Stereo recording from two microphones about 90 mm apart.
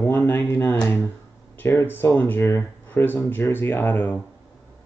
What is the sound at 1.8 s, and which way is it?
Speech, 25° left (ahead or behind).